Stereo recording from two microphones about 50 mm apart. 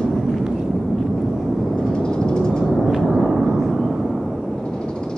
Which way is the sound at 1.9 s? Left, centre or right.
Centre.